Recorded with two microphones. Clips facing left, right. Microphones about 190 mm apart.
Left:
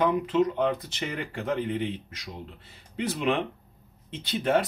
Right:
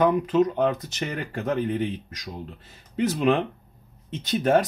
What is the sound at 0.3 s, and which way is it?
Speech, 40° right (ahead or behind).